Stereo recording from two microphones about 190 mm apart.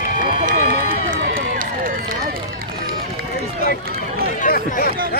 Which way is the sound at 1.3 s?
50° right (ahead or behind).